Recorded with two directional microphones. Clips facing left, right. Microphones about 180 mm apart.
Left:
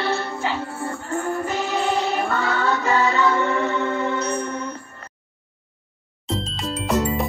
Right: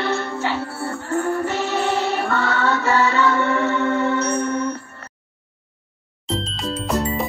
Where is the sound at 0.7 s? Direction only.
20° left (ahead or behind).